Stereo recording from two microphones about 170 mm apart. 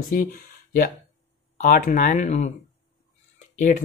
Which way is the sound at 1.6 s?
50° left (ahead or behind).